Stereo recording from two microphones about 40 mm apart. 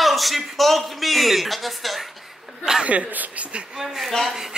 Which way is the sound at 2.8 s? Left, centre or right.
Right.